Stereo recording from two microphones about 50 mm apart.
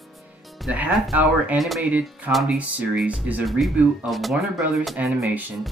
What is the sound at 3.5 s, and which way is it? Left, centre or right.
Speech, centre.